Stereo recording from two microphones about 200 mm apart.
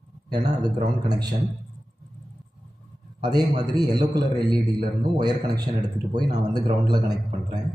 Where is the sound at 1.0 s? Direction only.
20° right (ahead or behind).